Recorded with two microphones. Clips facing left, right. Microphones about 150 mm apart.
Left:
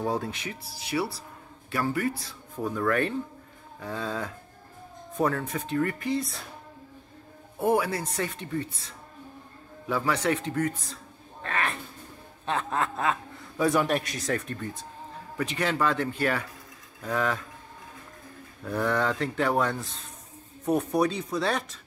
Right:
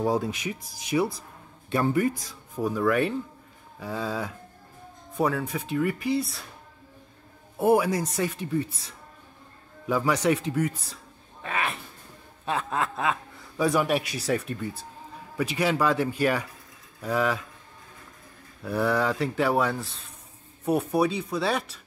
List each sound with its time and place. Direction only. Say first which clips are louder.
0.0 s speech: right 4 dB; 15° right (ahead or behind)
7.5 s speech: right 3 dB; 10° right (ahead or behind)
9.8 s speech: right 3 dB; 15° right (ahead or behind)
11.4 s a sound: even; 10° right (ahead or behind)
12.4 s a man's voice: even; 10° right (ahead or behind)
18.6 s speech: right 2 dB; 5° right (ahead or behind)